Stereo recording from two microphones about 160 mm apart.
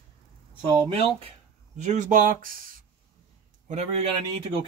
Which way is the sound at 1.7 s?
50° right (ahead or behind).